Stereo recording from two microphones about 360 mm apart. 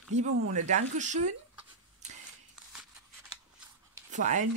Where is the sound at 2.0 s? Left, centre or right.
Centre.